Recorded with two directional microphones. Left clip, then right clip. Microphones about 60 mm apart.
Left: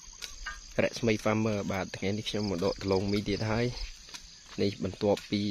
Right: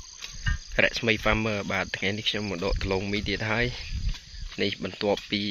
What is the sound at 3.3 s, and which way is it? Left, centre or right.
Speech, left.